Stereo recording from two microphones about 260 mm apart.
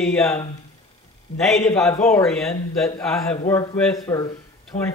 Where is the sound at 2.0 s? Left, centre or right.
Centre.